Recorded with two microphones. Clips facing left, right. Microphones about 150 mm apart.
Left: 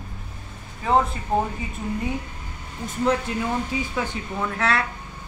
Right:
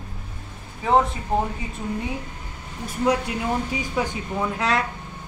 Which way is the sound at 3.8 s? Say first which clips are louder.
Right 1 dB; 15° right (ahead or behind).